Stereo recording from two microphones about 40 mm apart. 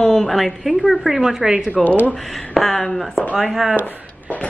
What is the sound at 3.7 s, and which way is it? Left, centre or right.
Speech, left.